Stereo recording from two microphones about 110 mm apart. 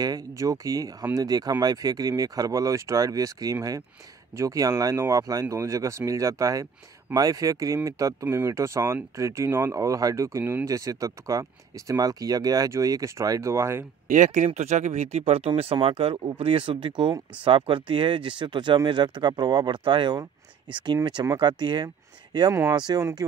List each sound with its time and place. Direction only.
0.0 s speech: 30° right (ahead or behind)
14.3 s speech: 85° right; by 23.0 s 40° right (ahead or behind)